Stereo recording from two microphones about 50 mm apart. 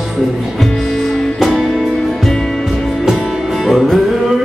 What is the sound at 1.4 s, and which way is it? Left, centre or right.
Music, centre.